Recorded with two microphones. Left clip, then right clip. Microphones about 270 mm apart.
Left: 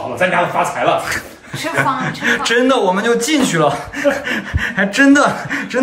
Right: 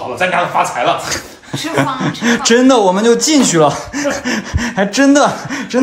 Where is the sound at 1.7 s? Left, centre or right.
Right.